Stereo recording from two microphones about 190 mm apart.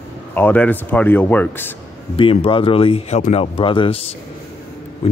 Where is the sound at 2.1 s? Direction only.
25° left (ahead or behind).